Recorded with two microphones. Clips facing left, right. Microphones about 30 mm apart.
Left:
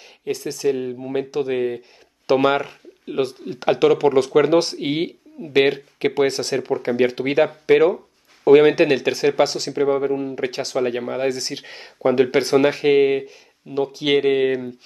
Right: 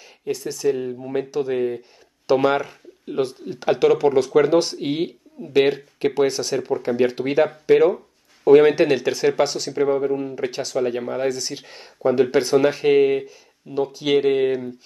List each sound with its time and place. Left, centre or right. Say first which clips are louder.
0.3 s speech: even; centre
3.7 s speech: left 1 dB; centre
4.0 s speech: left 1 dB; left